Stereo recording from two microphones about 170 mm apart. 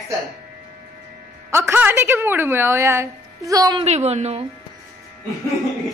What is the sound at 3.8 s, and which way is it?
Speech, 40° right (ahead or behind).